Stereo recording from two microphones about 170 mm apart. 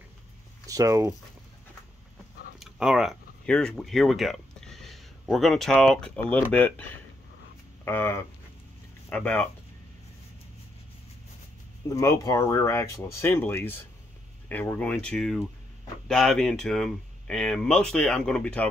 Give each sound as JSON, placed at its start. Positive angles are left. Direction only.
{"t": 0.7, "sound": "speech", "side_deg": -20}
{"t": 2.6, "sound": "speech", "side_deg": -5}
{"t": 11.9, "sound": "speech", "side_deg": 20}